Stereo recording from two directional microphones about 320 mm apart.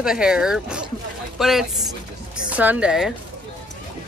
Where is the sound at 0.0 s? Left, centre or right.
Centre.